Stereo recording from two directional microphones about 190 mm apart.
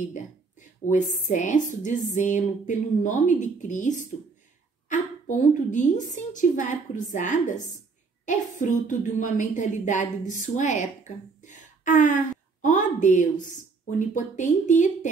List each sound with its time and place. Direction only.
0.8 s speech: 40° left (ahead or behind)
11.4 s a sound: 40° left (ahead or behind)
12.6 s speech: 40° left (ahead or behind)